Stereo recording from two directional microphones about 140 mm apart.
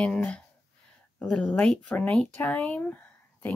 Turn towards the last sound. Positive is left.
turn(degrees=10)  # may be behind; listen again after turning